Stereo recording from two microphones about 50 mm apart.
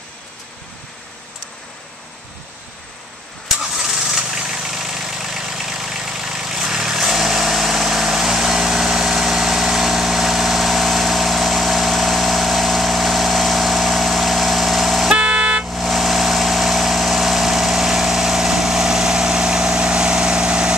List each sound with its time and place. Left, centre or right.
3.5 s engine starting: centre
15.1 s vehicle: right
15.7 s vehicle: centre; by 20.7 s right